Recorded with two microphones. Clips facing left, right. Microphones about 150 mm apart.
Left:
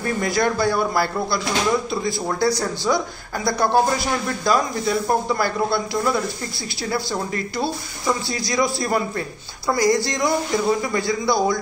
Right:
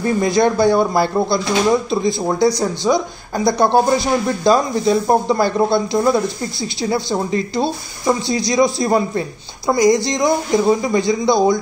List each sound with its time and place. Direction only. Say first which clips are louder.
0.0 s speech: right 6 dB; 20° right (ahead or behind)